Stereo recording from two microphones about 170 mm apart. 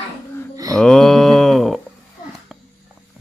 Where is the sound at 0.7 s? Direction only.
5° left (ahead or behind).